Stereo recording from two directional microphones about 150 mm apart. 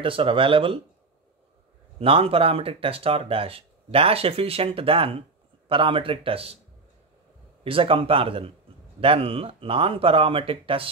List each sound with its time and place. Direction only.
0.0 s speech: 35° right (ahead or behind)
2.0 s speech: 40° right (ahead or behind)
7.6 s speech: 35° right (ahead or behind)